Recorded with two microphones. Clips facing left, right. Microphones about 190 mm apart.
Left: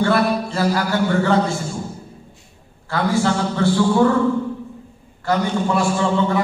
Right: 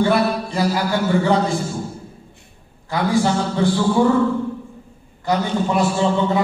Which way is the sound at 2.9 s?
15° right (ahead or behind).